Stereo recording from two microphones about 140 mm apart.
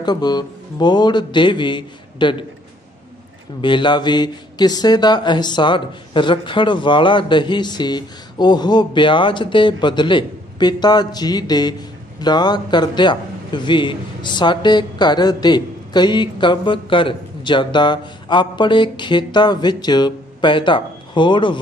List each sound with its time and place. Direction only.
0.0 s a man's voice: 30° left (ahead or behind)
3.6 s a man's voice: 35° left (ahead or behind)